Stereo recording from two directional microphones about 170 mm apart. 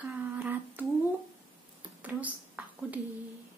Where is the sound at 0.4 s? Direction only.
10° right (ahead or behind).